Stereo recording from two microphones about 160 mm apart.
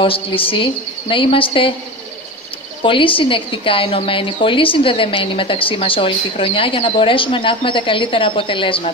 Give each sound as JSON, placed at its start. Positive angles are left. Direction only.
{"t": 0.0, "sound": "a woman's voice", "side_deg": 35}
{"t": 2.8, "sound": "a woman's voice", "side_deg": 30}